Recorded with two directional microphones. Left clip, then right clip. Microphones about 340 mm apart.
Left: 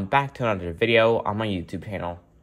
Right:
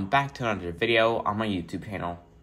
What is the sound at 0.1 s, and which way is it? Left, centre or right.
Speech, centre.